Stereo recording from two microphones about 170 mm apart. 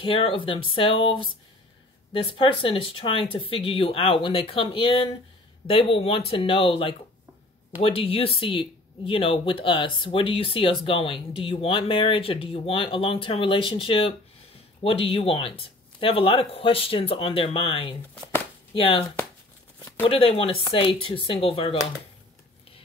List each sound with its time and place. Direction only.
0.0 s speech: 30° left (ahead or behind)